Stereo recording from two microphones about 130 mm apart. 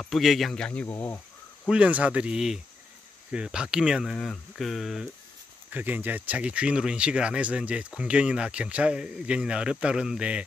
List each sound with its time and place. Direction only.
0.0 s speech: centre (ahead or behind)
0.9 s speech: 20° left (ahead or behind)
1.7 s speech: 10° right (ahead or behind)
5.7 s speech: 15° right (ahead or behind)